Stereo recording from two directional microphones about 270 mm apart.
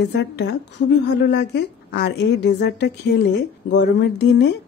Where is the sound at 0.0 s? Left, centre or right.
Left.